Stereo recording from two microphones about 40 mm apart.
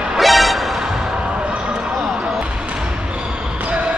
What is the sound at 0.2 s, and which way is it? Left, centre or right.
Music, centre.